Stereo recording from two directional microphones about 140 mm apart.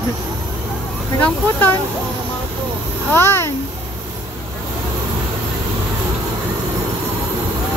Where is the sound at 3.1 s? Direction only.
15° left (ahead or behind).